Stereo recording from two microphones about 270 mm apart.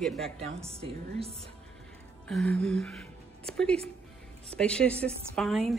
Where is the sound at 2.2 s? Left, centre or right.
Centre.